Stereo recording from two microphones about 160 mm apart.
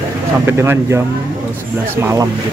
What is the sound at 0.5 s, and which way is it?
Speech, 15° right (ahead or behind).